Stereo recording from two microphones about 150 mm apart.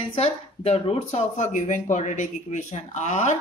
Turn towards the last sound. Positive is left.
turn(degrees=50)  # may be behind; listen again after turning